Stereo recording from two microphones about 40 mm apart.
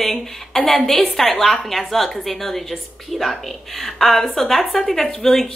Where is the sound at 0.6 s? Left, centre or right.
Centre.